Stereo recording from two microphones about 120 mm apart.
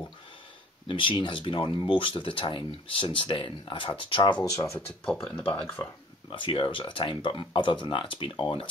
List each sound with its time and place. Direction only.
0.8 s speech: 45° left (ahead or behind); by 4.8 s 25° left (ahead or behind)
5.3 s speech: 15° left (ahead or behind)
6.3 s speech: 45° left (ahead or behind)